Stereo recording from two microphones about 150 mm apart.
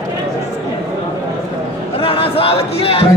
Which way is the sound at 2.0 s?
40° left (ahead or behind).